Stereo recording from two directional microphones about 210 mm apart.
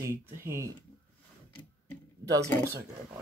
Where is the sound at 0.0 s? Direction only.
10° right (ahead or behind).